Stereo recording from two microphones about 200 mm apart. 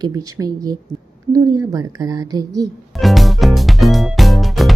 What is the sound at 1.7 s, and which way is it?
Speech, 15° right (ahead or behind).